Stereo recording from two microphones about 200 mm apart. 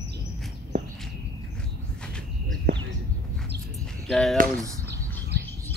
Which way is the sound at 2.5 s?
65° right (ahead or behind).